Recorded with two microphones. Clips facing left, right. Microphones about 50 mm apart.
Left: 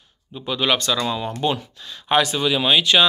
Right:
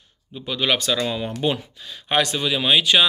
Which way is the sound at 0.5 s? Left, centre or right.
Centre.